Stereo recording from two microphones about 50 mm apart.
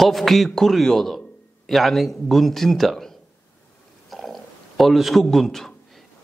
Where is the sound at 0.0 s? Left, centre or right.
Centre.